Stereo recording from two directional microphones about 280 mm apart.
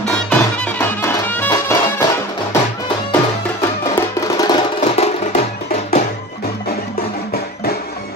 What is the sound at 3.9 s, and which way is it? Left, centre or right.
Music, centre.